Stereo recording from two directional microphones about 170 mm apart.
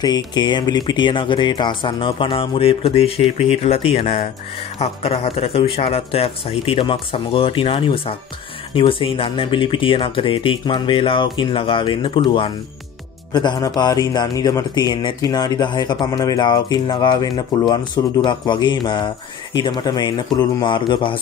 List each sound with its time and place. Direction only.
0.0 s speech: 25° left (ahead or behind)